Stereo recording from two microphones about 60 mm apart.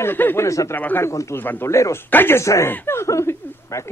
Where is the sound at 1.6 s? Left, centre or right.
Left.